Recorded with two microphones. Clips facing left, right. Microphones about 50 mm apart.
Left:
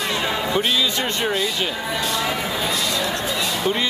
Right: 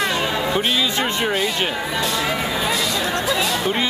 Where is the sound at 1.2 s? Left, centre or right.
Centre.